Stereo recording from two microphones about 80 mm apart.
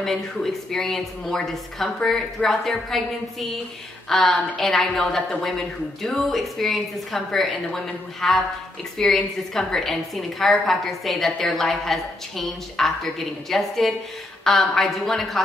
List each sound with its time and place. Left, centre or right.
0.0 s a woman's voice: centre